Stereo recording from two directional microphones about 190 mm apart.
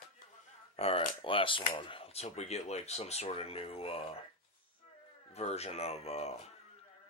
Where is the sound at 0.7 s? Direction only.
30° left (ahead or behind).